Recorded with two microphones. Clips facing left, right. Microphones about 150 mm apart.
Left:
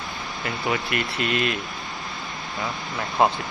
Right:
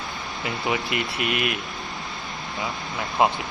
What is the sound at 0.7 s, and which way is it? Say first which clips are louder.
Speech: even; 20° right (ahead or behind).